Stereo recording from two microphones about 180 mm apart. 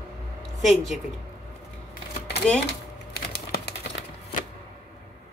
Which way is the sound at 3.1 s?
60° left (ahead or behind).